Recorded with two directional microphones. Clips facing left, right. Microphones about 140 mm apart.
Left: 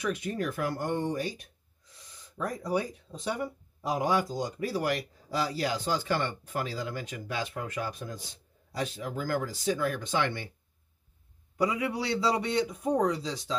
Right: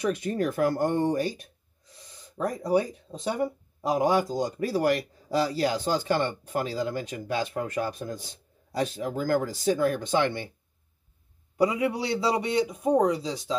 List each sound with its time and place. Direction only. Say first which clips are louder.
0.0 s speech: right 5 dB; 35° right (ahead or behind)
2.3 s speech: right 6 dB; 30° right (ahead or behind)
11.5 s a man's voice: right 4 dB; 25° right (ahead or behind)